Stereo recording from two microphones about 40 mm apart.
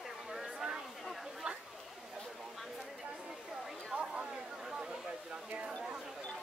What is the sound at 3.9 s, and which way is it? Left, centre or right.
Chatter, centre.